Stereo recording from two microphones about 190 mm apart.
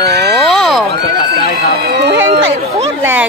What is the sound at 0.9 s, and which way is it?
Run, 55° right (ahead or behind).